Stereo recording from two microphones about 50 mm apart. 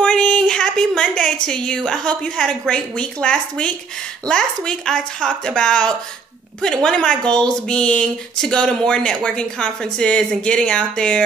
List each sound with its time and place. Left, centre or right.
0.0 s a woman's voice: left